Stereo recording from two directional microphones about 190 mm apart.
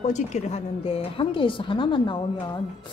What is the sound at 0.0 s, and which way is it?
A woman's voice, 40° left (ahead or behind).